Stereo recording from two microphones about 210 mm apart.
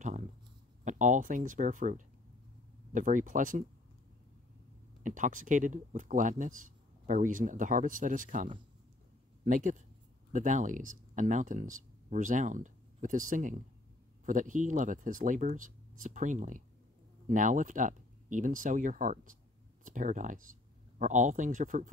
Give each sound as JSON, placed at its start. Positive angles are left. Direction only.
{"t": 0.8, "sound": "speech", "side_deg": -35}
{"t": 5.0, "sound": "speech", "side_deg": -40}